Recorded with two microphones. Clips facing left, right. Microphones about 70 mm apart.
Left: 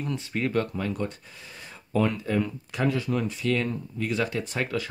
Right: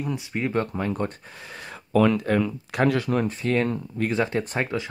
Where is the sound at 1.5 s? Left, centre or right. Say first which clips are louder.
Right 6 dB; right.